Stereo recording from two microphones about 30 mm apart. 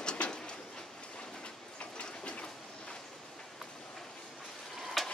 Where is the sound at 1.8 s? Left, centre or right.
Left.